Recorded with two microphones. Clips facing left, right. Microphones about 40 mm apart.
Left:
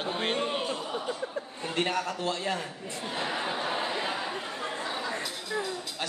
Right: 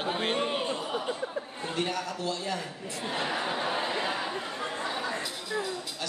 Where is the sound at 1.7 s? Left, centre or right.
Left.